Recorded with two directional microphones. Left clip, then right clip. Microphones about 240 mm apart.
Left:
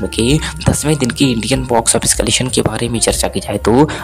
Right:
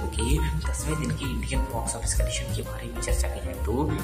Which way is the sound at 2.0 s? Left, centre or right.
Left.